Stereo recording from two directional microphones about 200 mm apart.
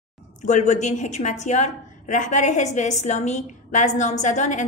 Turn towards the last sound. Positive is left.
turn(degrees=35)  # may be behind; listen again after turning